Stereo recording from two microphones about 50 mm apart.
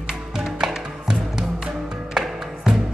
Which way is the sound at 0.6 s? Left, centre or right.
Centre.